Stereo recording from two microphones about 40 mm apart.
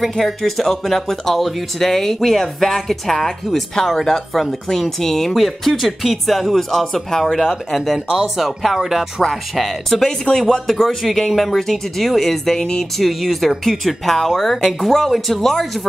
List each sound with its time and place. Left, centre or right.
0.2 s speech: centre
10.0 s speech: centre
12.9 s speech: centre